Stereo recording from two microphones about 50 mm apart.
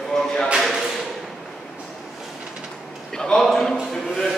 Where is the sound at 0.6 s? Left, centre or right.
Centre.